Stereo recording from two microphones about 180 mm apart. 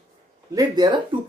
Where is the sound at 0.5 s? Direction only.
25° right (ahead or behind).